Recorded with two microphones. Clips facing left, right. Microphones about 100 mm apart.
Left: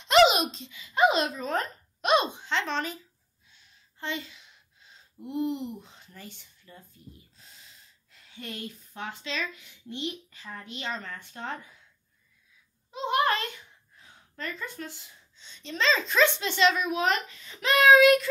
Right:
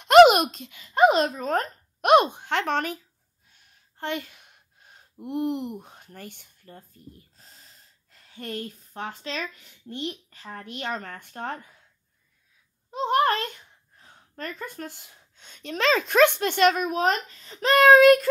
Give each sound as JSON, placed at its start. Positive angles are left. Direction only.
{"t": 0.0, "sound": "a child's voice", "side_deg": -55}
{"t": 12.9, "sound": "a woman's voice", "side_deg": -45}